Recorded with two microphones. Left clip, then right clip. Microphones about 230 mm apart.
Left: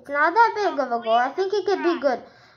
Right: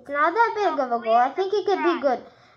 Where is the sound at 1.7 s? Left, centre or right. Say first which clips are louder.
Right 1 dB; right.